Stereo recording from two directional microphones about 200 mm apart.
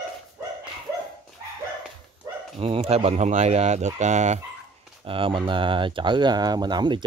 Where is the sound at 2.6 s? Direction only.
30° right (ahead or behind).